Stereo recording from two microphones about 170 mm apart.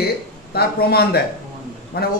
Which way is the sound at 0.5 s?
65° left (ahead or behind).